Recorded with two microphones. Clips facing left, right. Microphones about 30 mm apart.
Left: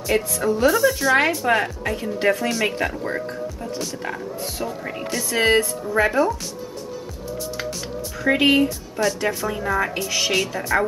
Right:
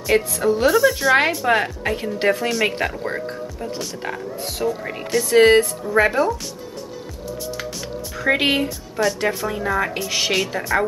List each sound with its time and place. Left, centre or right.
0.0 s a woman's voice: centre
2.2 s a woman's voice: centre
8.2 s a woman's voice: centre